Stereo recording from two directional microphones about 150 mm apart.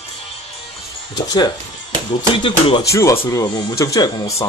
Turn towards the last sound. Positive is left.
turn(degrees=25)  # may be behind; listen again after turning